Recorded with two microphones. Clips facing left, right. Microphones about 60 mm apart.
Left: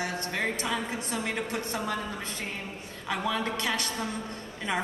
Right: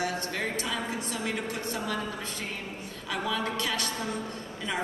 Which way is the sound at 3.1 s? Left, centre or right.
Left.